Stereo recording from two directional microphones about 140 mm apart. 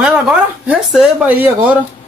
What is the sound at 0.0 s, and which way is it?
Speech, 5° right (ahead or behind).